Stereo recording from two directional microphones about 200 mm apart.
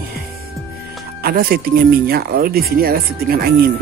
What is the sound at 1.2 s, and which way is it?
Speech, 50° right (ahead or behind).